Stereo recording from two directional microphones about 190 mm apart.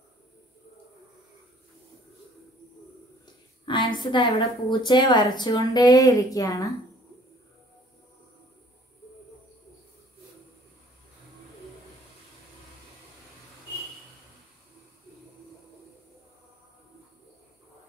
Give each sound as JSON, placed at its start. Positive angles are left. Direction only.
{"t": 3.6, "sound": "a woman's voice", "side_deg": 25}